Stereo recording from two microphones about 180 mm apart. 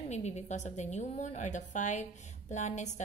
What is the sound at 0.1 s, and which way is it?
A woman's voice, 40° left (ahead or behind).